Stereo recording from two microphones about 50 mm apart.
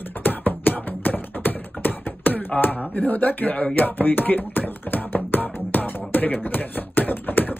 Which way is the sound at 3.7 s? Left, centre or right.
Left.